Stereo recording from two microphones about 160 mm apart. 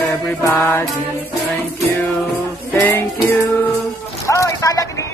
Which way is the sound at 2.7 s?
15° left (ahead or behind).